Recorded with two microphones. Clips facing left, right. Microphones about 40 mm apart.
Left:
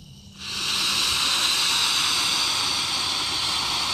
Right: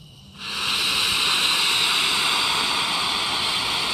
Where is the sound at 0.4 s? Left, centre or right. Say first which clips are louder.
Right 3 dB; centre.